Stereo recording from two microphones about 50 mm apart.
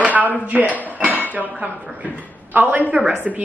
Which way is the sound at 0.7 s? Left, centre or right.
Right.